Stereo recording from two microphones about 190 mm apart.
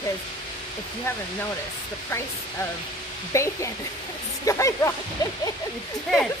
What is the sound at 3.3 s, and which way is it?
Speech, 15° left (ahead or behind).